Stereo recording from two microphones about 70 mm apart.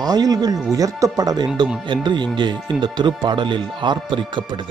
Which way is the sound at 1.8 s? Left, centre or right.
Right.